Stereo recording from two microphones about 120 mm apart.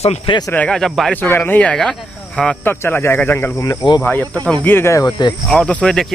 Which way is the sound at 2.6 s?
15° left (ahead or behind).